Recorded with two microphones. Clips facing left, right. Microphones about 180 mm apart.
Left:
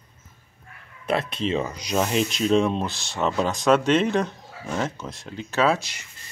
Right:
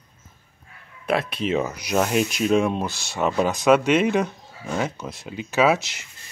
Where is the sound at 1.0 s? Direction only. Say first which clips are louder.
Right 1 dB; 5° right (ahead or behind).